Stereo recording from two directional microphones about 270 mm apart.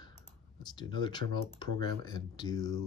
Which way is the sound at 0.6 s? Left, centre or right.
Centre.